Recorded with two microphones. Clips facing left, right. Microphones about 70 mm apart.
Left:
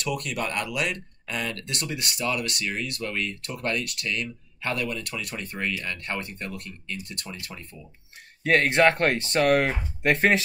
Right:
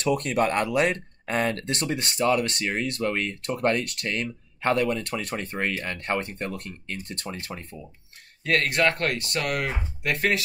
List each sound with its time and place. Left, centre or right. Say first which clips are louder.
0.0 s speech: right 6 dB; right
8.5 s speech: left 3 dB; left